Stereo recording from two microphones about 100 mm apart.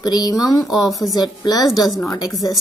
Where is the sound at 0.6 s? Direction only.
Centre (ahead or behind).